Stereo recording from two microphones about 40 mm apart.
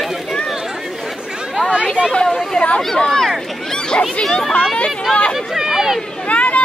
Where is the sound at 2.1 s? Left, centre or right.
Left.